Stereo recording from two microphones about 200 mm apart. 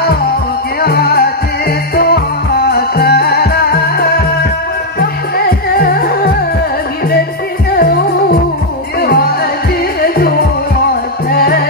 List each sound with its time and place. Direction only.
0.8 s music: 50° left (ahead or behind)
5.8 s music: 50° left (ahead or behind)
7.7 s music: 50° left (ahead or behind)
11.3 s music: 50° left (ahead or behind)